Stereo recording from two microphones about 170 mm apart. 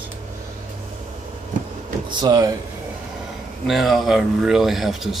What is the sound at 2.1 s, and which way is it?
Speech, 25° right (ahead or behind).